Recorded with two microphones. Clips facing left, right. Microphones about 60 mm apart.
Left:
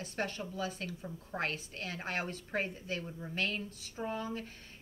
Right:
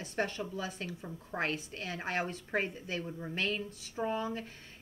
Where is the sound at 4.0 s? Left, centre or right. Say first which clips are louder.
Right 4 dB; centre.